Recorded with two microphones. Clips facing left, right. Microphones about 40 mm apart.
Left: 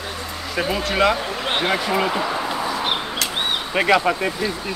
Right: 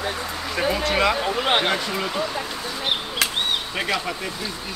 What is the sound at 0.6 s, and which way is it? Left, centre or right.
Speech, centre.